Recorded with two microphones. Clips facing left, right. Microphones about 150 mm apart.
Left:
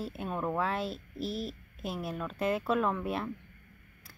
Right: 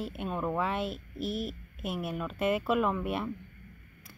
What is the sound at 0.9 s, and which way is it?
Speech, 30° left (ahead or behind).